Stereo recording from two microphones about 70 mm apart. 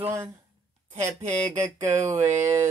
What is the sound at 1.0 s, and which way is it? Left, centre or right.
Speech, right.